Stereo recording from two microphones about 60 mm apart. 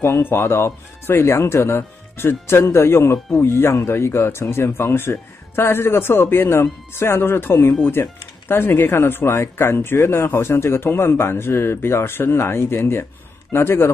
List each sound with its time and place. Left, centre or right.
0.0 s speech: left